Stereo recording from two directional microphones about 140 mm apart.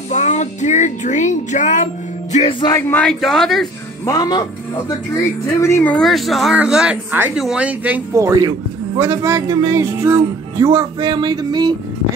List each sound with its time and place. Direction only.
0.1 s speech: 60° left (ahead or behind)
2.9 s speech: 5° left (ahead or behind)
4.0 s speech: 25° left (ahead or behind)
5.6 s speech: 20° left (ahead or behind)
5.9 s speech: centre (ahead or behind)
8.2 s a man's voice: 25° right (ahead or behind)